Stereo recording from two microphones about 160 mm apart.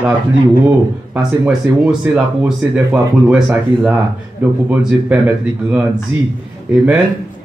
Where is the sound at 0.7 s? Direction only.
10° right (ahead or behind).